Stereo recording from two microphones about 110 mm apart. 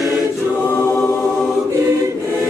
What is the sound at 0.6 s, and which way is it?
Choir, 15° left (ahead or behind).